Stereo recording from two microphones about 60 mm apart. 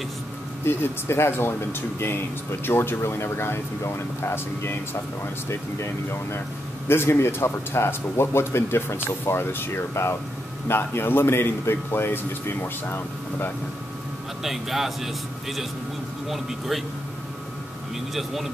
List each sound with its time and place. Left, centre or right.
0.7 s a man's voice: left
14.4 s speech: centre
16.3 s speech: centre
18.1 s speech: centre